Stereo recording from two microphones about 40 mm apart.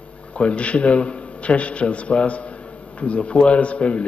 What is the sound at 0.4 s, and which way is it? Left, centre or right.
A man's voice, left.